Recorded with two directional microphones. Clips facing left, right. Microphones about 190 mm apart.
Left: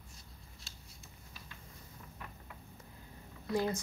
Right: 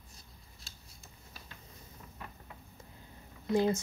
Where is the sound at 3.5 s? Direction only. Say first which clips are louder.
Right 5 dB; 25° right (ahead or behind).